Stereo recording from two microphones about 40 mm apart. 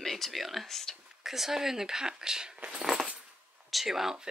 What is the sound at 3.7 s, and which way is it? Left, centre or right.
Speech, centre.